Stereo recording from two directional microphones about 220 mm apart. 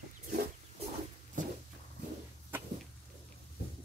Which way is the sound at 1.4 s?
35° right (ahead or behind).